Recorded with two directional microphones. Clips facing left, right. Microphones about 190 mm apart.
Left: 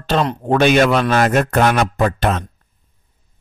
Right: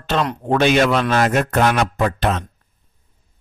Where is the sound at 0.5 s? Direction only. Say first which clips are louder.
Left 2 dB; 50° left (ahead or behind).